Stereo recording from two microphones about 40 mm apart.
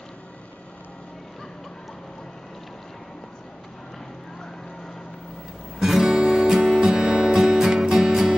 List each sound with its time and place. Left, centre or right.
5.8 s guitar: centre
6.1 s music: centre